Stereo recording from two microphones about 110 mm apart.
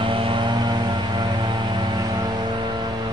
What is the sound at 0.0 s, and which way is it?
Vehicle, 50° right (ahead or behind).